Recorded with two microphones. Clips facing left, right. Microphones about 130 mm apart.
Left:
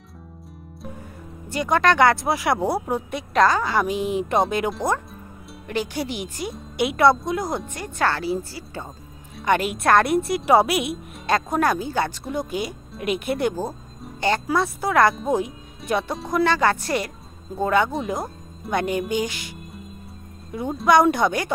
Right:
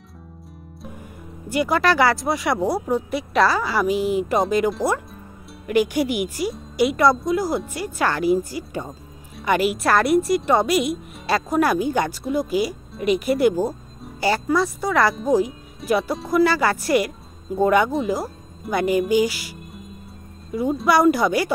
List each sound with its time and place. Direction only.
1.5 s speech: 10° right (ahead or behind)
12.3 s speech: 5° right (ahead or behind)
17.9 s speech: centre (ahead or behind)